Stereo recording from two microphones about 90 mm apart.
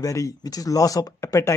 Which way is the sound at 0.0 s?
35° left (ahead or behind).